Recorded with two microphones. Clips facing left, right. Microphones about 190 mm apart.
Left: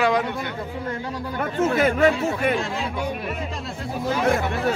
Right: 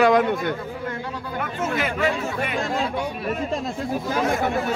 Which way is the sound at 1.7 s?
45° left (ahead or behind).